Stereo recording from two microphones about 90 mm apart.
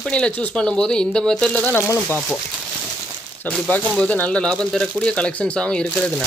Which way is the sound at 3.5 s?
15° left (ahead or behind).